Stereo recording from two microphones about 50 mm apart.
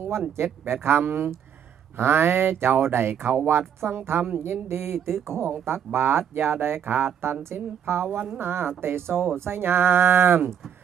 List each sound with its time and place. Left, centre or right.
0.4 s speech: right